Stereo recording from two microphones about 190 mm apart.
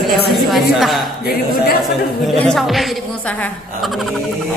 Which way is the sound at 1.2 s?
55° left (ahead or behind).